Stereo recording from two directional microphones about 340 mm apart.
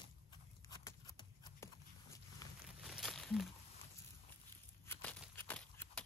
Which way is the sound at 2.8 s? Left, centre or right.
Centre.